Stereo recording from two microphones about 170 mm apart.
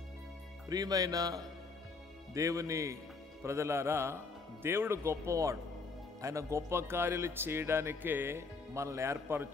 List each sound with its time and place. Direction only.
0.7 s speech: 20° right (ahead or behind)